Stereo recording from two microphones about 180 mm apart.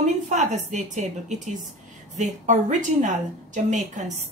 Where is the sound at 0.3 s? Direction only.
40° right (ahead or behind).